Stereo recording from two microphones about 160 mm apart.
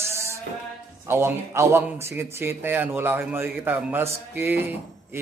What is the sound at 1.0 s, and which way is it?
A man's voice, 15° right (ahead or behind).